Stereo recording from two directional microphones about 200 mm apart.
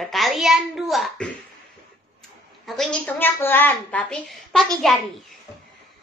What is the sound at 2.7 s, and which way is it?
A woman's voice, 5° left (ahead or behind).